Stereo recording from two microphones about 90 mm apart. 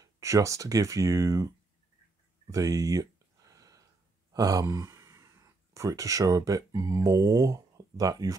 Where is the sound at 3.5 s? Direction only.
40° right (ahead or behind).